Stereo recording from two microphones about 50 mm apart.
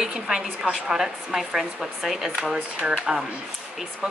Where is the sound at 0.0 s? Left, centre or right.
Centre.